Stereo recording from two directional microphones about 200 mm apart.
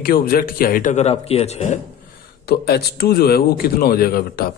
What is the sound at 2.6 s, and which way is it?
A man's voice, 50° left (ahead or behind).